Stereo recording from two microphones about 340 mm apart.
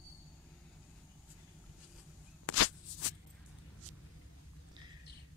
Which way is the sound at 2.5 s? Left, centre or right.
Left.